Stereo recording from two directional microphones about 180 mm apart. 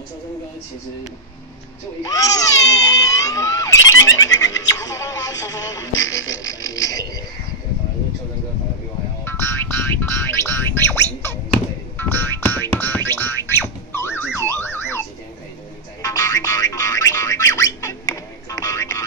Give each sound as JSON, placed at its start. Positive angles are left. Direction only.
{"t": 2.0, "sound": "a sound", "side_deg": 20}
{"t": 6.2, "sound": "frog", "side_deg": 90}
{"t": 9.2, "sound": "music", "side_deg": 10}
{"t": 14.5, "sound": "car alarm", "side_deg": 15}
{"t": 16.0, "sound": "music", "side_deg": 20}